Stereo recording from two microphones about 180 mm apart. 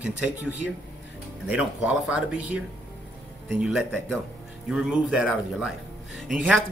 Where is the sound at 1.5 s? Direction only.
5° right (ahead or behind).